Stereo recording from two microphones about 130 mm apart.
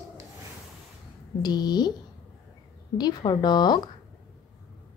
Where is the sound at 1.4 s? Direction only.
30° left (ahead or behind).